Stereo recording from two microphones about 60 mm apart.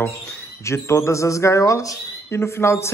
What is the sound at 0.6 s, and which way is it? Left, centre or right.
Speech, left.